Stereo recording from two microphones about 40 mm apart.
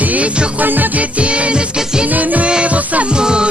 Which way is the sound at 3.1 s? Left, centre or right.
Right.